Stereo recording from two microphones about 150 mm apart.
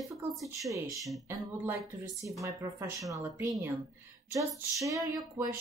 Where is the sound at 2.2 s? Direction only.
20° right (ahead or behind).